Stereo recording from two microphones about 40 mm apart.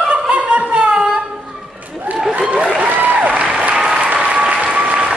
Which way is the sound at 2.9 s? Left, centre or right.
Right.